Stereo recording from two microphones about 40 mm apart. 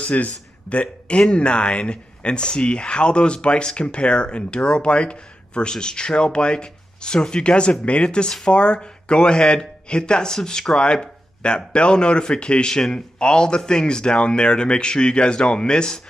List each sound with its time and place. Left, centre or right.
0.0 s a man's voice: left